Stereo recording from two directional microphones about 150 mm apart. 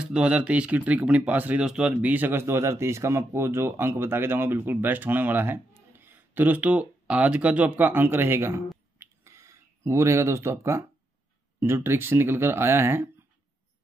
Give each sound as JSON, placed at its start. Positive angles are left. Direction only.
{"t": 0.0, "sound": "speech", "side_deg": -5}
{"t": 8.9, "sound": "a sound", "side_deg": -15}
{"t": 11.6, "sound": "speech", "side_deg": -15}